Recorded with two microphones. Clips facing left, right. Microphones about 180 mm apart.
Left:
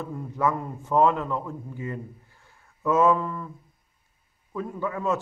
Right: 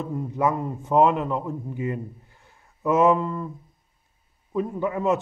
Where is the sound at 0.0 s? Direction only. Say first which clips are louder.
Right 2 dB; 20° right (ahead or behind).